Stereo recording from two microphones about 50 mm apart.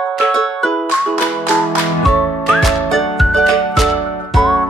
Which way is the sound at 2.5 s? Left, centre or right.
Centre.